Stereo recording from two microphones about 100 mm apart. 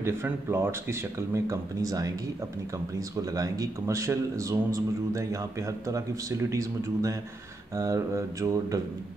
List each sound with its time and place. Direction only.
0.0 s speech: 25° right (ahead or behind)